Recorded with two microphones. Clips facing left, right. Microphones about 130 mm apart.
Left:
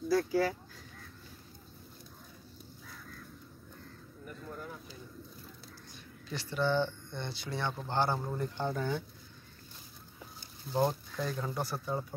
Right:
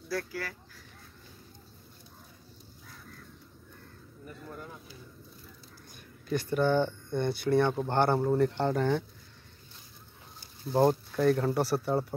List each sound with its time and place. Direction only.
0.1 s speech: 20° left (ahead or behind)
6.2 s speech: 50° right (ahead or behind)
8.4 s speech: 70° right (ahead or behind)
10.8 s speech: 60° right (ahead or behind)